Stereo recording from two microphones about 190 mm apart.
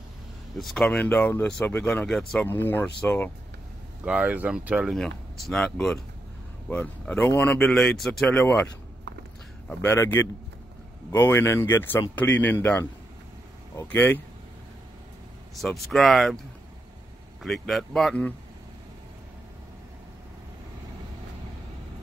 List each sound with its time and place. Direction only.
0.6 s speech: centre (ahead or behind)
4.0 s speech: 5° right (ahead or behind)
9.7 s speech: 10° left (ahead or behind)
15.6 s speech: centre (ahead or behind)
17.4 s speech: centre (ahead or behind)